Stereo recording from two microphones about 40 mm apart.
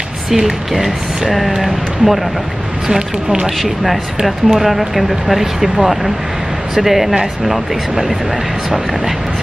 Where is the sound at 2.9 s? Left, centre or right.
Right.